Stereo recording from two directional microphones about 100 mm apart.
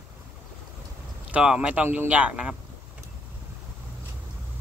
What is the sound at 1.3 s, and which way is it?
Speech, 10° right (ahead or behind).